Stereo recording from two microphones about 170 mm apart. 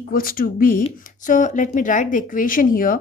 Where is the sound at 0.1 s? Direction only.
60° left (ahead or behind).